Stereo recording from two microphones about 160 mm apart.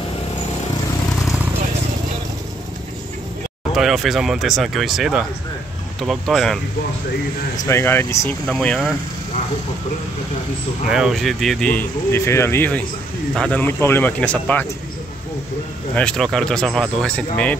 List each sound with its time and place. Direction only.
3.7 s speech: centre (ahead or behind)
7.5 s speech: 15° left (ahead or behind)
8.5 s speech: 5° left (ahead or behind)
10.9 s speech: 5° right (ahead or behind)
16.0 s speech: 5° left (ahead or behind)